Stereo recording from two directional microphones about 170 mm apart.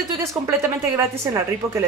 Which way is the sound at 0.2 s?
15° right (ahead or behind).